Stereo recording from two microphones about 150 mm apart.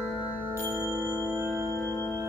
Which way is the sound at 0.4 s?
15° right (ahead or behind).